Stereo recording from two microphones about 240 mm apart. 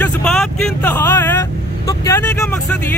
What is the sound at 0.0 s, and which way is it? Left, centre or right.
Vehicle, centre.